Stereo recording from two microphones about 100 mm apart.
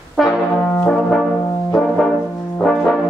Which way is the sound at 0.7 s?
15° left (ahead or behind).